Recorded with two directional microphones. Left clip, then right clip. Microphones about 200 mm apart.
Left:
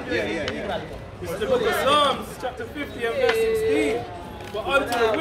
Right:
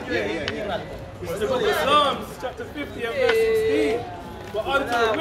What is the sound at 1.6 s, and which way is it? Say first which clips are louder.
Speech: right 1 dB; 50° right (ahead or behind).